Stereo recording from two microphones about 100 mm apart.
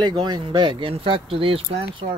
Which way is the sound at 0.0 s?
45° right (ahead or behind).